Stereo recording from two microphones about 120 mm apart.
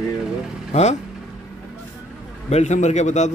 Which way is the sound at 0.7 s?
75° left (ahead or behind).